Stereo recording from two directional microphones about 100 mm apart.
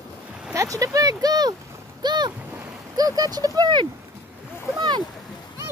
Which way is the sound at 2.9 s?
40° right (ahead or behind).